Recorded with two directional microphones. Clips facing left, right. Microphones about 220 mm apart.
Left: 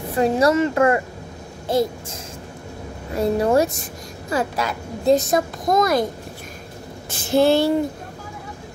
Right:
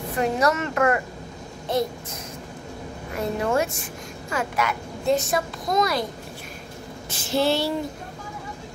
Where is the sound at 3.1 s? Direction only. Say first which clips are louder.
Left 6 dB; 35° left (ahead or behind).